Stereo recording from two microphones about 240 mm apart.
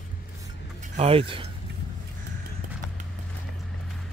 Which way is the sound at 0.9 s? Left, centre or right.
Right.